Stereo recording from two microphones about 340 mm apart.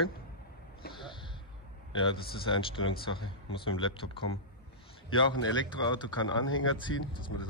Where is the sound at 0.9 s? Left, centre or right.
Centre.